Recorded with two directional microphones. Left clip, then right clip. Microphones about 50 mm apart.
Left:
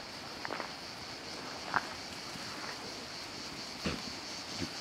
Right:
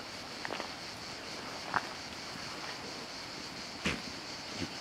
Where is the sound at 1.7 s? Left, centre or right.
Right.